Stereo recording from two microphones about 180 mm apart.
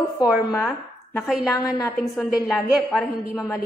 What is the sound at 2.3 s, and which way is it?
Speech, 5° right (ahead or behind).